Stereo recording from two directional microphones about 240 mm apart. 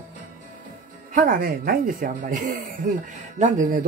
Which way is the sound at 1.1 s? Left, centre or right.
Right.